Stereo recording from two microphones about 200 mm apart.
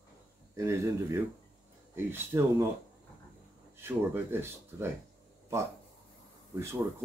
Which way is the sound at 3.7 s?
10° right (ahead or behind).